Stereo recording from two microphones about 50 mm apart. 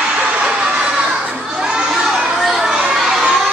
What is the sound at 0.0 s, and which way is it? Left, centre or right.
Vehicle, right.